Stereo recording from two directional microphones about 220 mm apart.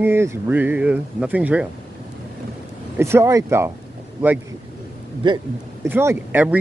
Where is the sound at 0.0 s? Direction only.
10° right (ahead or behind).